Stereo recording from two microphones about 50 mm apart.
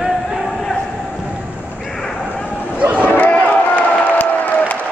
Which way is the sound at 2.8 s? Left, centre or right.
Right.